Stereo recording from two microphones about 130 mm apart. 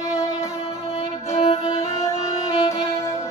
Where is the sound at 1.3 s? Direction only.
50° left (ahead or behind).